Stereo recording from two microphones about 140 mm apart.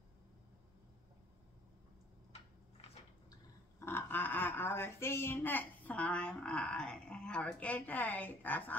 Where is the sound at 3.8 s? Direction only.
15° left (ahead or behind).